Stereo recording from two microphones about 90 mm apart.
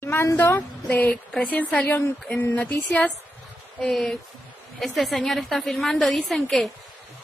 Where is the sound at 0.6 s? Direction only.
20° left (ahead or behind).